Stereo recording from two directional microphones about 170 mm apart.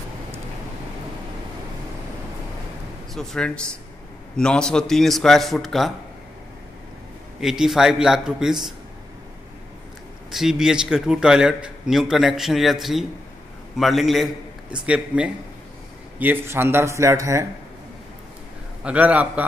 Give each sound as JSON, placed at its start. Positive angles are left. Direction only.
{"t": 3.2, "sound": "a man's voice", "side_deg": 5}
{"t": 7.3, "sound": "a man's voice", "side_deg": -5}
{"t": 10.3, "sound": "a man's voice", "side_deg": 0}
{"t": 18.9, "sound": "speech", "side_deg": -10}